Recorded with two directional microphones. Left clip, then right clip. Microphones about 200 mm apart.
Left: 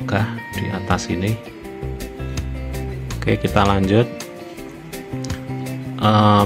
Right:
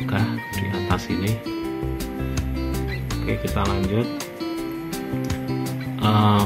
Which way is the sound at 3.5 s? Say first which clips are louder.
Left 10 dB; 45° left (ahead or behind).